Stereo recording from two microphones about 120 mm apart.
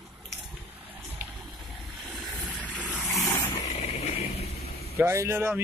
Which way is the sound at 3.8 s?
65° left (ahead or behind).